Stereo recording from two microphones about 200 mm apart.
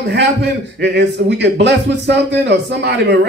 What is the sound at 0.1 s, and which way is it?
A man's voice, 60° right (ahead or behind).